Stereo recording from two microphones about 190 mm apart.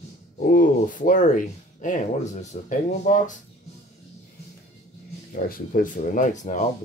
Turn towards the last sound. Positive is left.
turn(degrees=40)  # may be behind; listen again after turning